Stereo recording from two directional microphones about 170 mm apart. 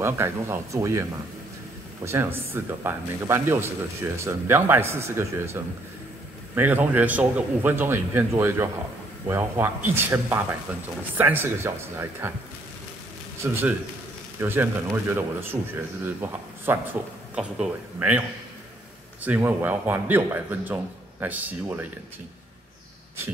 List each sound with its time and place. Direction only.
0.0 s speech: 15° right (ahead or behind)
2.0 s speech: 15° right (ahead or behind)
9.8 s speech: 10° right (ahead or behind)
19.2 s speech: 10° right (ahead or behind)